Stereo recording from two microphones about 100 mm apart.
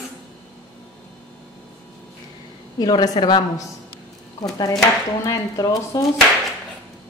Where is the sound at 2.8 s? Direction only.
45° left (ahead or behind).